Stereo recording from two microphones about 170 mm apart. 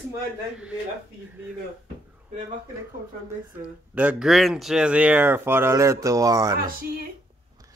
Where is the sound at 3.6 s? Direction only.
10° right (ahead or behind).